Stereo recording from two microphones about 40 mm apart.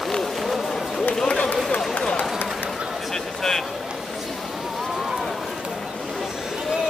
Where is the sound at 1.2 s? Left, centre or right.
Left.